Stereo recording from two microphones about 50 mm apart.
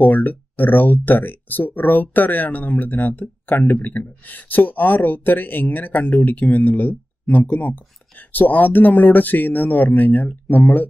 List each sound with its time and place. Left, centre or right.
0.0 s speech: left